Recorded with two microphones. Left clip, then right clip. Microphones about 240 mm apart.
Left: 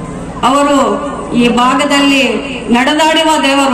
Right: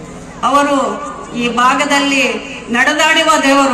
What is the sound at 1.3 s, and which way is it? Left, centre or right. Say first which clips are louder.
A man's voice: left 2 dB; right.